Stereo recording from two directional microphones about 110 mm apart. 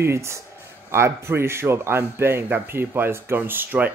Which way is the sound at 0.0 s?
25° right (ahead or behind).